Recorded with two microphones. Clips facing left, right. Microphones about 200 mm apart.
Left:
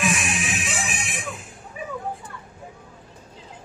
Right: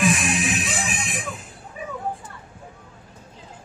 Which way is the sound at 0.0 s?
35° right (ahead or behind).